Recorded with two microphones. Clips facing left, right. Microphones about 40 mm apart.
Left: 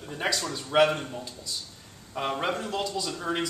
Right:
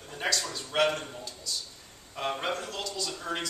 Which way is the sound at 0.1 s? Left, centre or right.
Centre.